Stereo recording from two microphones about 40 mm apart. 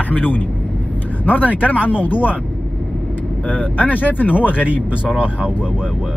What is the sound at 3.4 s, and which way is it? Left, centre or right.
Speech, left.